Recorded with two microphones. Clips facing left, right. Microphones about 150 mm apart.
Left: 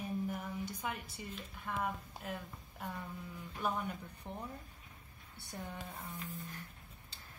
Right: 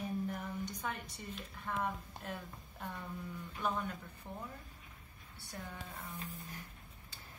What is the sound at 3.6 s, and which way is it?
Speech, 15° left (ahead or behind).